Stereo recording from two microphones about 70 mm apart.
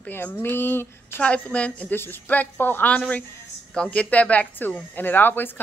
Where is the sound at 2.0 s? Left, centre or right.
Left.